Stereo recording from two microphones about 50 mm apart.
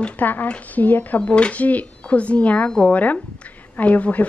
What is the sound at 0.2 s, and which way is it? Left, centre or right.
A woman's voice, left.